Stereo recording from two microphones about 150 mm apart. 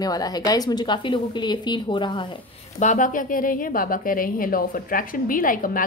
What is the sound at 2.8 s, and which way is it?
A woman's voice, 55° left (ahead or behind).